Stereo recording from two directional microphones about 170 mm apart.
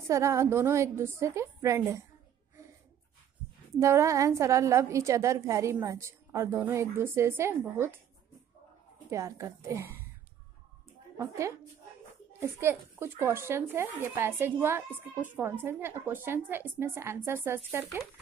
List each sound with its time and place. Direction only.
0.1 s a woman's voice: 15° right (ahead or behind)
3.8 s a woman's voice: 15° right (ahead or behind)
9.1 s a woman's voice: 20° right (ahead or behind)
11.1 s a woman's voice: 15° right (ahead or behind)